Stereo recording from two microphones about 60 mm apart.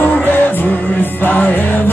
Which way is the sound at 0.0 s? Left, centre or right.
Left.